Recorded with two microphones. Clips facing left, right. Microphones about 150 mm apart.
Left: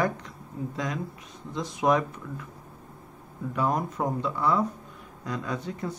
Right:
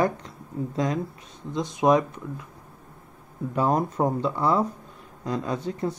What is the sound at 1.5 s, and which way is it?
Speech, 20° right (ahead or behind).